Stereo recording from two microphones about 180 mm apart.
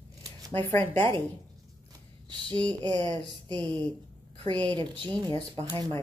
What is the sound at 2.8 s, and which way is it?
A woman's voice, 25° right (ahead or behind).